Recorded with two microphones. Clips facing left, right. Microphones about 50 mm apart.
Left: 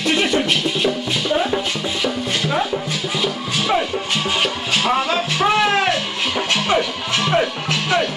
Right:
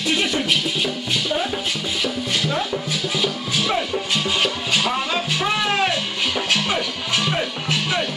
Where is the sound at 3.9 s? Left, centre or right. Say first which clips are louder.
Left 1 dB; centre.